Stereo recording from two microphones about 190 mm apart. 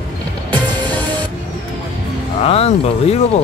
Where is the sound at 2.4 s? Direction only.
30° left (ahead or behind).